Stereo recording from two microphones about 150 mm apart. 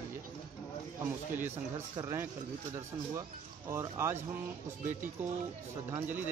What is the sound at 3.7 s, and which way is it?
Speech, 15° right (ahead or behind).